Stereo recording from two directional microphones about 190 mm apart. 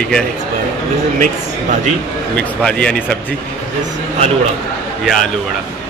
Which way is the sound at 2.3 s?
5° left (ahead or behind).